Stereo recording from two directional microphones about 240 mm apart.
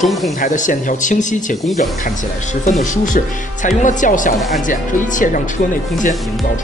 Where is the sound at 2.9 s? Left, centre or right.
Left.